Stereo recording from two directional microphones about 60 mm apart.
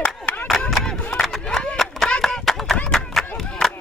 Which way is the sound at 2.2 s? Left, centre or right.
Centre.